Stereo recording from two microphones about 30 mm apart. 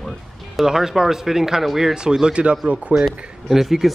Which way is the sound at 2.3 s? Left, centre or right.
Right.